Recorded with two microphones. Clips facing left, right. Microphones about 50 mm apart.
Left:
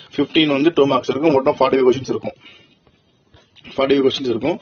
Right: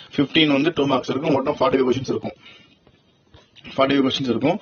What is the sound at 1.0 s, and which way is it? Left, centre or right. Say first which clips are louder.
Speech: left 6 dB; left.